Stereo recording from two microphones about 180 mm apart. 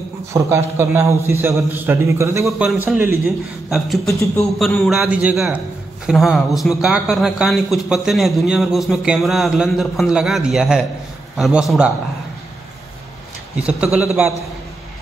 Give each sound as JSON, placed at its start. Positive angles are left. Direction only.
{"t": 0.3, "sound": "speech", "side_deg": -15}
{"t": 2.4, "sound": "speech", "side_deg": -5}
{"t": 3.7, "sound": "a man's voice", "side_deg": 0}
{"t": 13.6, "sound": "speech", "side_deg": -5}